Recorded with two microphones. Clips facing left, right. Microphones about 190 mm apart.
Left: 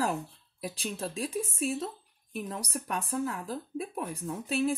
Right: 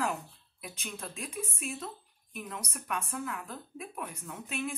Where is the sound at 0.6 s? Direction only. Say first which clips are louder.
Left 7 dB; 35° left (ahead or behind).